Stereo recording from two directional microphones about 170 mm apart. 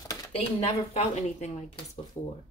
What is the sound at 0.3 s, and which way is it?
Speech, 35° left (ahead or behind).